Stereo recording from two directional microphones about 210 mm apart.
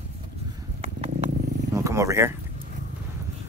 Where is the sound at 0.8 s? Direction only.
30° right (ahead or behind).